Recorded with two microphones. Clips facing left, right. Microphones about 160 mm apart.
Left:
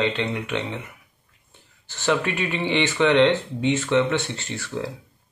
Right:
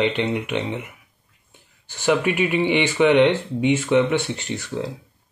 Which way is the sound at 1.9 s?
10° right (ahead or behind).